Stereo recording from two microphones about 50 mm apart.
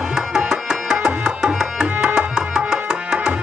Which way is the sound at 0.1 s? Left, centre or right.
Centre.